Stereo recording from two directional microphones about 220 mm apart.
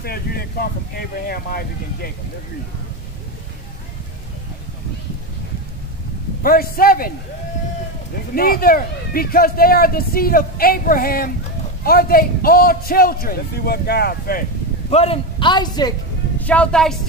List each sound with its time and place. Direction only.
0.0 s a man's voice: 45° left (ahead or behind)
6.4 s a man's voice: 40° left (ahead or behind)
8.4 s a man's voice: 40° left (ahead or behind)
14.9 s a man's voice: 25° left (ahead or behind)
16.3 s speech: 5° left (ahead or behind)